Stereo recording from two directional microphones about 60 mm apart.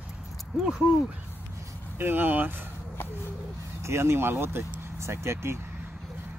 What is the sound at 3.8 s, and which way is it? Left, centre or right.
Speech, right.